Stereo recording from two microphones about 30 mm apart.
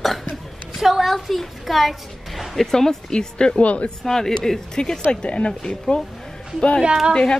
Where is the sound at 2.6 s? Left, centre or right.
Centre.